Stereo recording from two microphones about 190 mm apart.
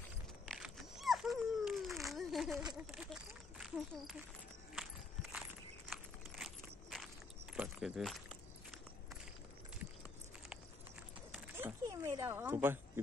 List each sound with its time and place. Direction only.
0.5 s dog: centre (ahead or behind)
2.5 s a sound: 20° right (ahead or behind)
2.8 s speech: 5° right (ahead or behind)
4.7 s walk: centre (ahead or behind)
5.9 s a sound: centre (ahead or behind)
7.5 s keys jangling: 5° right (ahead or behind)
11.3 s speech: 10° right (ahead or behind)